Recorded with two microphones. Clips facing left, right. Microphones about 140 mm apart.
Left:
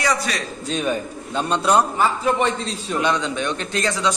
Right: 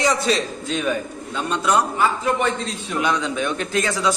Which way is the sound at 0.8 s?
30° left (ahead or behind).